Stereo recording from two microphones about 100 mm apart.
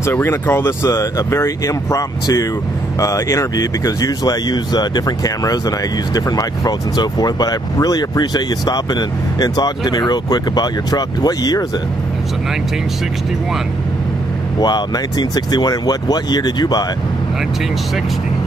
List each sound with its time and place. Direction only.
0.0 s speech: 25° left (ahead or behind); by 11.6 s 40° left (ahead or behind)
14.6 s speech: 45° left (ahead or behind)